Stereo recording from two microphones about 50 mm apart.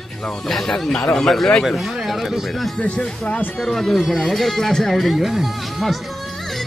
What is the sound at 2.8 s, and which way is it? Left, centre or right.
Speech, left.